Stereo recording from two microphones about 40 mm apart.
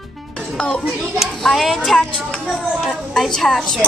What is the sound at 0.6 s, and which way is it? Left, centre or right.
Speech, left.